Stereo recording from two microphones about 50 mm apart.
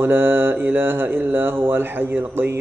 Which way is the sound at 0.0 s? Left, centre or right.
Right.